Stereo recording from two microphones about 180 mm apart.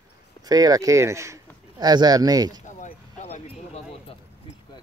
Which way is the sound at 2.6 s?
40° left (ahead or behind).